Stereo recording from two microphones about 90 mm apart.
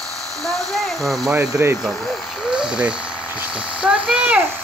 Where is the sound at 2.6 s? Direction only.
10° right (ahead or behind).